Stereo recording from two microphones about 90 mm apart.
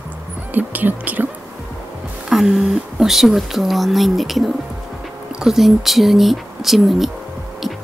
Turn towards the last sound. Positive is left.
turn(degrees=-5)  # may be behind; listen again after turning